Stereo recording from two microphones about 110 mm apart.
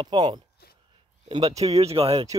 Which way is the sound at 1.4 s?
70° right (ahead or behind).